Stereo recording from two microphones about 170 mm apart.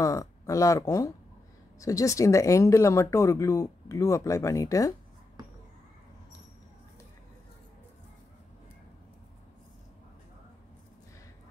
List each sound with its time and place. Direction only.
0.0 s speech: 20° left (ahead or behind)